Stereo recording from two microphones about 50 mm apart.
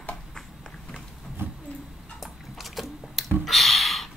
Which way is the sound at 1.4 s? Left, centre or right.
Right.